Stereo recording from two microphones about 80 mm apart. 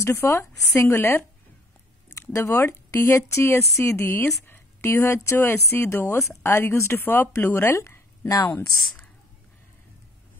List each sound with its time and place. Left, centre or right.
0.0 s speech: left